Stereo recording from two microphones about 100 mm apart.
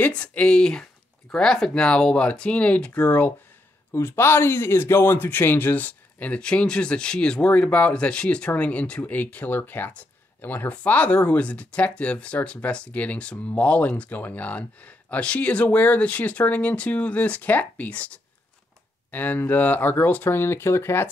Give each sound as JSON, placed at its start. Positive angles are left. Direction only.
{"t": 0.0, "sound": "speech", "side_deg": 10}